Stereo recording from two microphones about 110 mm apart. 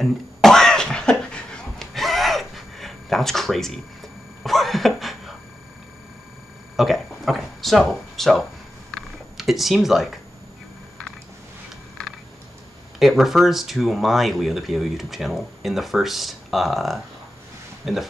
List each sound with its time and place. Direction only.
0.0 s cough: 5° left (ahead or behind)
6.8 s speech: centre (ahead or behind)
8.9 s a sound: centre (ahead or behind)
13.0 s speech: centre (ahead or behind)